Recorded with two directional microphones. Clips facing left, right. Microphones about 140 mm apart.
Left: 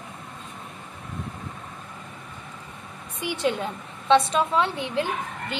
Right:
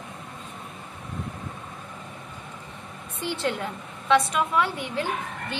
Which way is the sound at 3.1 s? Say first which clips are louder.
Left 2 dB; 15° left (ahead or behind).